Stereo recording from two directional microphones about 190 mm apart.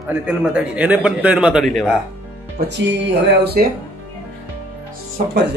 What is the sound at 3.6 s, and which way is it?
Speech, 50° right (ahead or behind).